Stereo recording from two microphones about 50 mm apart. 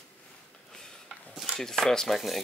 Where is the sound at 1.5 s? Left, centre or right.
Centre.